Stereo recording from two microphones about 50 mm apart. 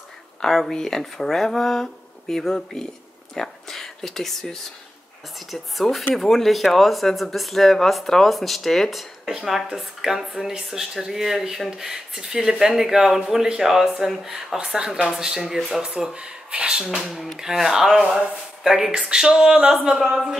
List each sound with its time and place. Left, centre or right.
0.4 s speech: centre
9.7 s speech: centre
14.6 s speech: centre
17.0 s speech: centre